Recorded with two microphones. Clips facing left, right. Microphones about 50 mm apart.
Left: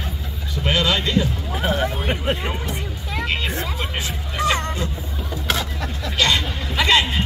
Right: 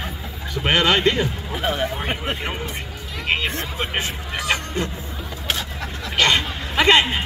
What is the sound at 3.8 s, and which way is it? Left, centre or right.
Hubbub, right.